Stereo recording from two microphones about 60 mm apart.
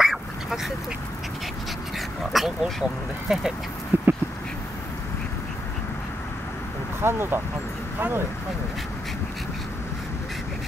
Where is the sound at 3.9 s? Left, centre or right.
Right.